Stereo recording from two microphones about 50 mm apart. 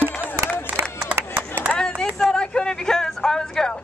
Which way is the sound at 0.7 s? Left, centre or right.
Right.